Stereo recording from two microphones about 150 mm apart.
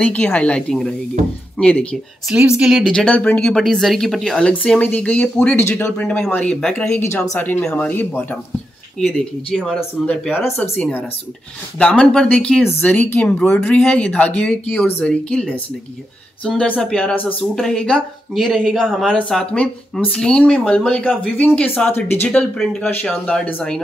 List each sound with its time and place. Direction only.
0.0 s speech: 10° left (ahead or behind)
2.2 s speech: 5° right (ahead or behind)
7.0 s speech: 20° left (ahead or behind)
16.4 s speech: 5° left (ahead or behind)